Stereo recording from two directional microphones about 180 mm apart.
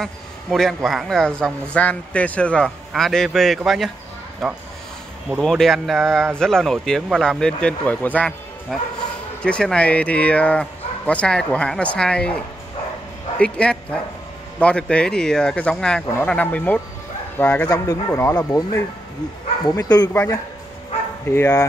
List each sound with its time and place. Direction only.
0.0 s a man's voice: centre (ahead or behind)
13.4 s a man's voice: 5° left (ahead or behind)
21.3 s speech: 15° left (ahead or behind)